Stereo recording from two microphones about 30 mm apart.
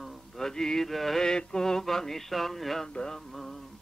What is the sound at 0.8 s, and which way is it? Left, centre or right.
Mantra, centre.